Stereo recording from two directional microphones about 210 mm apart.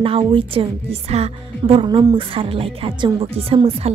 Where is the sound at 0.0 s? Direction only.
25° right (ahead or behind).